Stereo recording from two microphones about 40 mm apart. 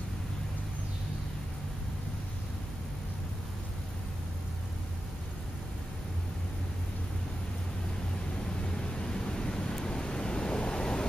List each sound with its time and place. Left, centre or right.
8.9 s waves: centre